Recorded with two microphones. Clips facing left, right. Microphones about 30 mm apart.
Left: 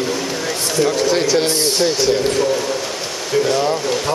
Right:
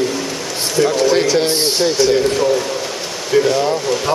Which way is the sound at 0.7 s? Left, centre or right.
Centre.